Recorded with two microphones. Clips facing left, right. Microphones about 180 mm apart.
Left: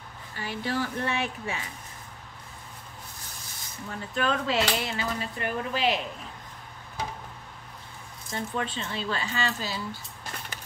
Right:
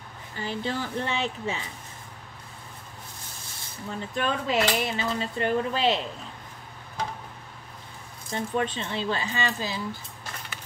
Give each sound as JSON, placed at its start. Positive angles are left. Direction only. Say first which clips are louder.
{"t": 0.4, "sound": "speech", "louder": "even", "side_deg": -25}
{"t": 3.9, "sound": "speech", "louder": "even", "side_deg": -20}
{"t": 8.3, "sound": "speech", "louder": "right 4 dB", "side_deg": -20}